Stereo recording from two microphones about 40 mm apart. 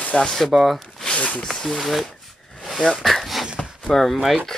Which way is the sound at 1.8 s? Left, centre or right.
Centre.